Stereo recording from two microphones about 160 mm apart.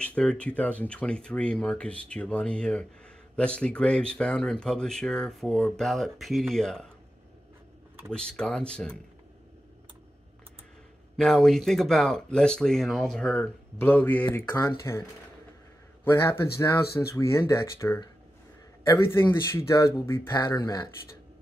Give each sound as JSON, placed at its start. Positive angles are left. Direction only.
{"t": 0.0, "sound": "speech", "side_deg": 5}
{"t": 8.1, "sound": "speech", "side_deg": 5}
{"t": 11.1, "sound": "speech", "side_deg": 5}
{"t": 13.7, "sound": "speech", "side_deg": 15}
{"t": 19.0, "sound": "speech", "side_deg": 15}